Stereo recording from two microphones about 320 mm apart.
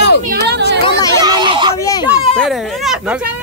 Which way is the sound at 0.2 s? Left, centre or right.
Right.